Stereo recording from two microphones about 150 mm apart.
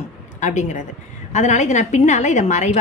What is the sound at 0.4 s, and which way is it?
A woman's voice, 50° left (ahead or behind).